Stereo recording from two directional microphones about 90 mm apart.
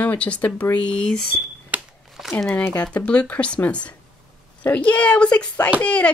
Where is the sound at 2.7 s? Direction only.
15° left (ahead or behind).